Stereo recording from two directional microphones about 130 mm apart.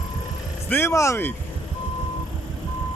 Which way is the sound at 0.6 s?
15° left (ahead or behind).